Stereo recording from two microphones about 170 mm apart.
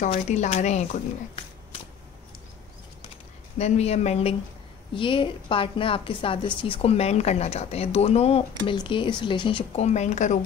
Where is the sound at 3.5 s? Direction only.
40° left (ahead or behind).